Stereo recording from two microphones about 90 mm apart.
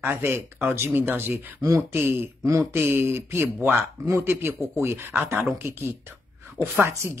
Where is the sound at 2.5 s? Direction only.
35° right (ahead or behind).